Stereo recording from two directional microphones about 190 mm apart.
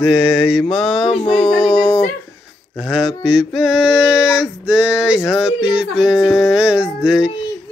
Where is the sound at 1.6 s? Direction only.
5° right (ahead or behind).